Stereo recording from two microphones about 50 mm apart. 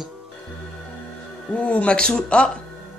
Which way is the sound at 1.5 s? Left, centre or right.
Left.